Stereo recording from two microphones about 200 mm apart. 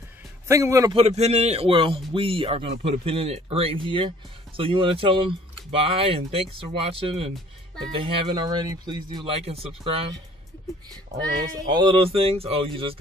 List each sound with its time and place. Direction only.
0.5 s a man's voice: 15° right (ahead or behind)
0.9 s a man's voice: 30° right (ahead or behind)
11.6 s speech: 20° right (ahead or behind)